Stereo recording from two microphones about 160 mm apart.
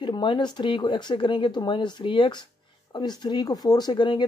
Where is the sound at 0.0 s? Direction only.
30° left (ahead or behind).